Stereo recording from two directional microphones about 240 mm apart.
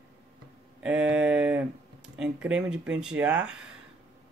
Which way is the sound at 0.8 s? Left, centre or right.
Centre.